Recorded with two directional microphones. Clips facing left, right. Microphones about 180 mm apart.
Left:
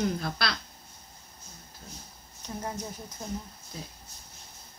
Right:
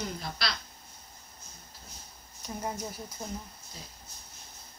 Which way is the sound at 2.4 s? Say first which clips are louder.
Even; 10° right (ahead or behind).